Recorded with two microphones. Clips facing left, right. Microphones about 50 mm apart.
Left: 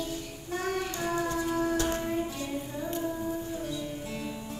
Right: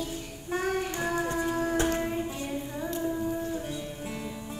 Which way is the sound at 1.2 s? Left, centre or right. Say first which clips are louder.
Left 1 dB; right.